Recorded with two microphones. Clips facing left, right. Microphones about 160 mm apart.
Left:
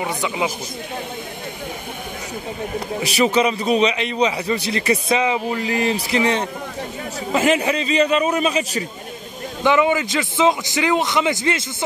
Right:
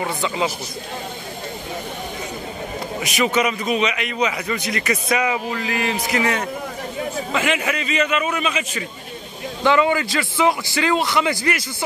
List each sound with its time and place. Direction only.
0.0 s a man's voice: 15° left (ahead or behind)
3.0 s a man's voice: 35° left (ahead or behind)
5.7 s a man's voice: 35° left (ahead or behind)
9.6 s a man's voice: 15° left (ahead or behind)